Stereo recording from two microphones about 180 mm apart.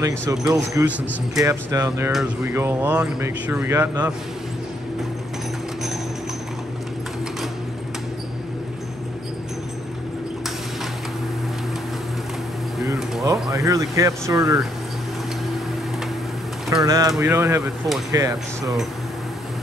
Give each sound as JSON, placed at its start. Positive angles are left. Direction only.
{"t": 0.0, "sound": "speech", "side_deg": -20}
{"t": 13.2, "sound": "speech", "side_deg": -20}
{"t": 16.7, "sound": "speech", "side_deg": -20}